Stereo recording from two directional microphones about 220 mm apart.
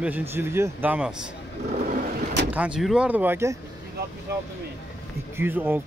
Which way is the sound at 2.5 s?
5° right (ahead or behind).